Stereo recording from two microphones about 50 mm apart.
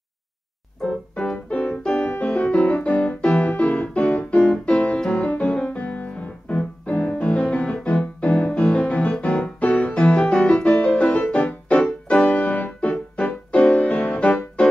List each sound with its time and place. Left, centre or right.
1.1 s keyboard: centre
5.1 s piano: left
13.1 s music: left